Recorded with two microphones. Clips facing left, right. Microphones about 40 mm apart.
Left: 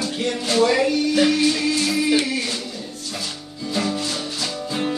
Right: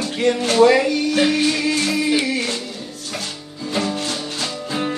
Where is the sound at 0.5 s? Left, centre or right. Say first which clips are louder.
Right 3 dB; right.